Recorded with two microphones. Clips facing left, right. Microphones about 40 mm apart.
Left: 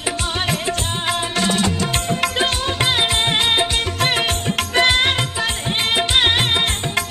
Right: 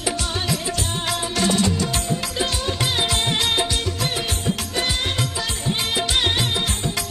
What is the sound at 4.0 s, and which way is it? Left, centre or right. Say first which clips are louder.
Music: left 6 dB; left.